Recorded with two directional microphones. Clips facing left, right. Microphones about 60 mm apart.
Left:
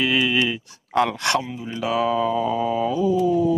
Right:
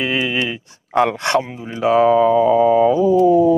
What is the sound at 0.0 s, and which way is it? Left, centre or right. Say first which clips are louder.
Speech: right 1 dB; right.